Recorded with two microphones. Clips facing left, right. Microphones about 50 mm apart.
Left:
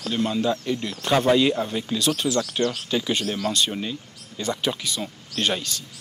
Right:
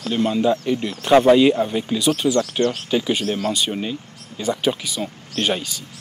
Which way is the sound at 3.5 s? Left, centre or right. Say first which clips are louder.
Right 2 dB; centre.